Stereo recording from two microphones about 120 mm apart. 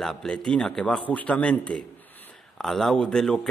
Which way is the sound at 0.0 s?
5° left (ahead or behind).